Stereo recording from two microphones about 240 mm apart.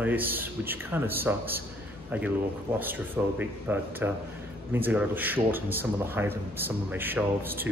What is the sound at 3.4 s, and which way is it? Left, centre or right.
A man's voice, centre.